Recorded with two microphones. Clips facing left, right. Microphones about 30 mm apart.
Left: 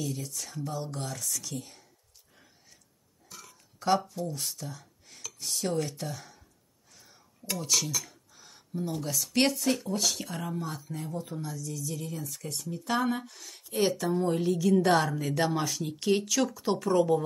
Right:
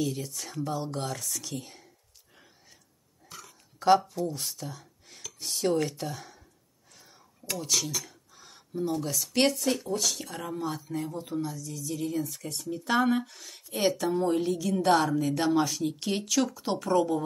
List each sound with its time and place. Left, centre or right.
0.0 s speech: centre
0.7 s speech: right
1.0 s speech: centre
1.6 s speech: centre
4.4 s speech: centre
7.5 s a sound: centre
9.0 s speech: centre